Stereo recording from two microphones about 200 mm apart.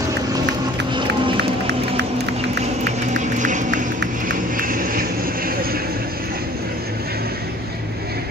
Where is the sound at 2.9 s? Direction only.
35° right (ahead or behind).